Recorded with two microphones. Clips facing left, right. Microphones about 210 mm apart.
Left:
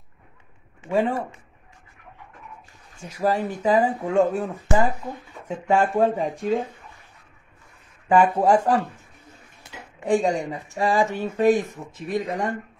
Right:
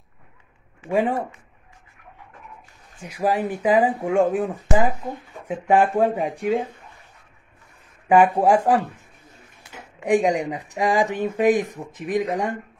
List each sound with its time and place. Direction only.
0.8 s speech: 15° right (ahead or behind)
3.0 s speech: 10° right (ahead or behind)
8.1 s speech: 15° right (ahead or behind)
10.0 s speech: 15° right (ahead or behind)